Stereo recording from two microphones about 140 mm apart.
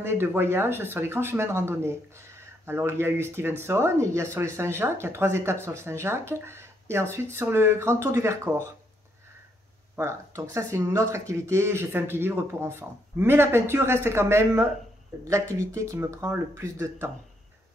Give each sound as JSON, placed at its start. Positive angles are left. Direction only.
{"t": 0.0, "sound": "speech", "side_deg": -15}
{"t": 9.9, "sound": "speech", "side_deg": -20}